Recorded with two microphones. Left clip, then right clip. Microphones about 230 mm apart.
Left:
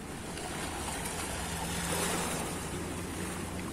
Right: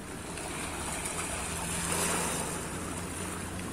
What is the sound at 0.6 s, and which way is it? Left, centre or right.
Vehicle, centre.